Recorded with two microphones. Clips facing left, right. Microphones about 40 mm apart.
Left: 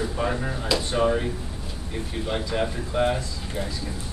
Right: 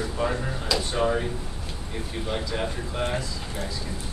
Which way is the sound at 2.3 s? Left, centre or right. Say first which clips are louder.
Left 3 dB; centre.